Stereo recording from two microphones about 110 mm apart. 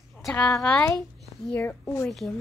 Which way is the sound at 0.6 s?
10° left (ahead or behind).